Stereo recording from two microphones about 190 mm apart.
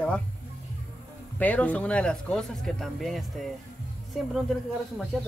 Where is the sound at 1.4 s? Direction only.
5° left (ahead or behind).